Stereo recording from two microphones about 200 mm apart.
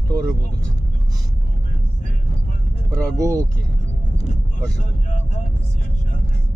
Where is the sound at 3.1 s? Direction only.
15° right (ahead or behind).